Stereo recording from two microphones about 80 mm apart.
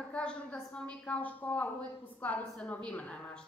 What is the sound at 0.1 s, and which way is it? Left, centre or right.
Speech, centre.